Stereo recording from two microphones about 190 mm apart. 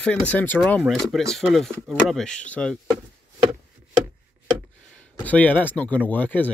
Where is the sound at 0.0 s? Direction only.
5° left (ahead or behind).